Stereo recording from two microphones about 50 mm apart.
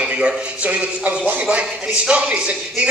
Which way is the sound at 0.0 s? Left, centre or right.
Right.